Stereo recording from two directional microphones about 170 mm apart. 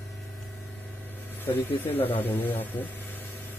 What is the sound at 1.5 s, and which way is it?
Speech, 10° left (ahead or behind).